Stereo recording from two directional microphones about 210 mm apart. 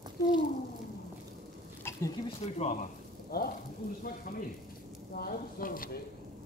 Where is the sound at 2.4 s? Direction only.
30° left (ahead or behind).